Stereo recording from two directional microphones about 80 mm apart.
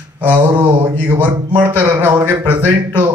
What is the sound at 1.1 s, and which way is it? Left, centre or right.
Speech, right.